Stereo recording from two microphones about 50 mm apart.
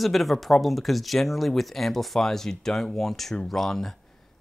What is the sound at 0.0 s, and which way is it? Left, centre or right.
Speech, centre.